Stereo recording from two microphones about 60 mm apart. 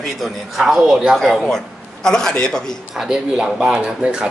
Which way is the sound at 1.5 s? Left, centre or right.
Centre.